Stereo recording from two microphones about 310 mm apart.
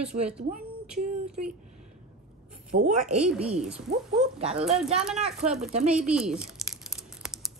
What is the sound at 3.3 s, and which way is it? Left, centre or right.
Speech, centre.